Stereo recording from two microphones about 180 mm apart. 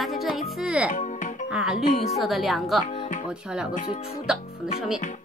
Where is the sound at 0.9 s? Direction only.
45° left (ahead or behind).